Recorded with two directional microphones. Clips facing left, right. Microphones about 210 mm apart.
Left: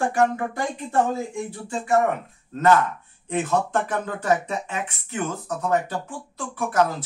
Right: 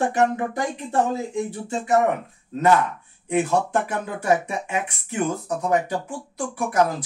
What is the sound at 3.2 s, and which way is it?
Speech, 10° right (ahead or behind).